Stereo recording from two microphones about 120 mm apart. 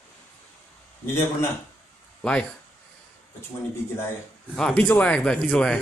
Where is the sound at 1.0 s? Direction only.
20° left (ahead or behind).